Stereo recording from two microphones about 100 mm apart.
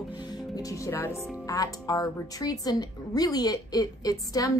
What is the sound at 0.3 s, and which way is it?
Music, 35° left (ahead or behind).